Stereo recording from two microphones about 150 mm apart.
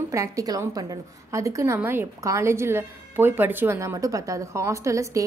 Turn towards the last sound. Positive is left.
turn(degrees=-20)  # may be behind; listen again after turning